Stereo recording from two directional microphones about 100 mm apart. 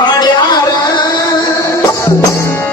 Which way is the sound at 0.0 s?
40° left (ahead or behind).